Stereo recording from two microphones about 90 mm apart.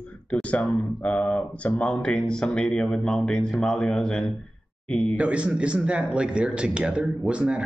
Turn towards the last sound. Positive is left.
turn(degrees=-10)  # may be behind; listen again after turning